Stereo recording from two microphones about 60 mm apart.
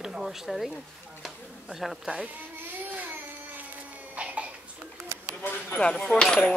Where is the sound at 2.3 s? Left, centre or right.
Right.